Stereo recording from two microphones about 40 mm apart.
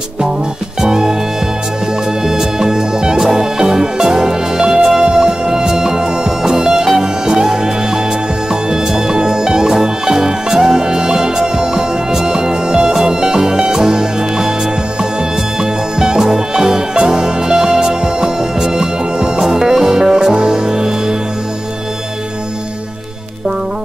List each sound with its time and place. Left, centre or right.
0.7 s music: centre
2.2 s music: centre
15.6 s music: centre